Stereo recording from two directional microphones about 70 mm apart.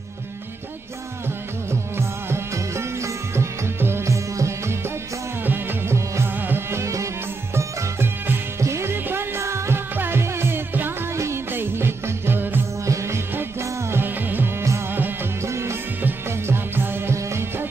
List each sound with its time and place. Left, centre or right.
1.7 s music: right
5.4 s music: right
12.8 s music: right
13.3 s music: right
15.4 s music: right